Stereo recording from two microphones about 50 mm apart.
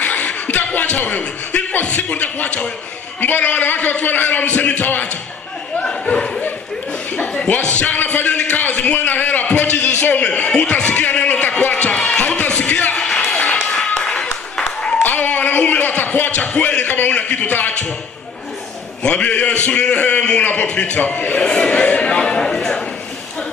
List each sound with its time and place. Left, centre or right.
0.0 s music: left
0.7 s a man's voice: left
5.8 s speech: left
7.4 s a man's voice: left
11.6 s a sound: left
12.9 s a sound: centre
13.4 s a sound: left
14.8 s applause: centre
15.0 s a sound: left
16.3 s a man's voice: left
19.0 s a man's voice: left
21.4 s speech: centre